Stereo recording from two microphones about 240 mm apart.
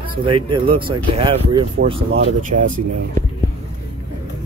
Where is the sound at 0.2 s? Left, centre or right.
Right.